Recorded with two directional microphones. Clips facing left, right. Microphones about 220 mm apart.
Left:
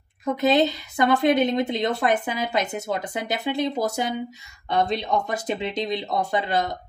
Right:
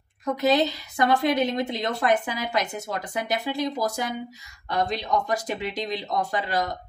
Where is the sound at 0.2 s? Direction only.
20° left (ahead or behind).